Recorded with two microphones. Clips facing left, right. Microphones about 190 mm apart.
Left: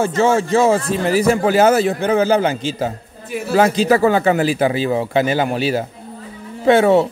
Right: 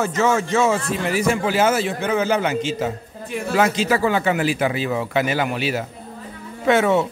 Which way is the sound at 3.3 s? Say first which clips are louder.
Left 2 dB; 5° left (ahead or behind).